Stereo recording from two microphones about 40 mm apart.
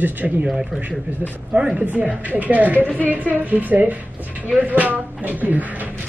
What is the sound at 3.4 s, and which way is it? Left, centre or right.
Speech, right.